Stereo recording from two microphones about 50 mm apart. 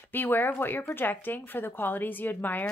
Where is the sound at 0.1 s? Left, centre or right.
Left.